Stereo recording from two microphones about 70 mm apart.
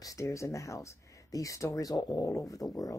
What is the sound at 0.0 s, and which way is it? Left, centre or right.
Speech, left.